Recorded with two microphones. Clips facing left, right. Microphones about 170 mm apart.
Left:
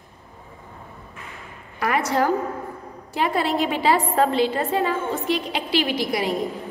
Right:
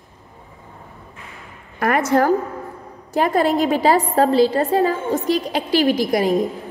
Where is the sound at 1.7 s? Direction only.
50° right (ahead or behind).